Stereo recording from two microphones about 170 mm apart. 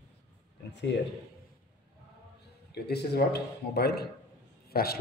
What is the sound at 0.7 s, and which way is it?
Speech, 90° left.